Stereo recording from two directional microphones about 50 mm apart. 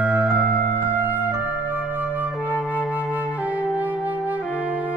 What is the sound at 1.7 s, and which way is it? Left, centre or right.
Flute, right.